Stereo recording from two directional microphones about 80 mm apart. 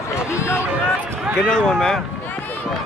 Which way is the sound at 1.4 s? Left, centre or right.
Centre.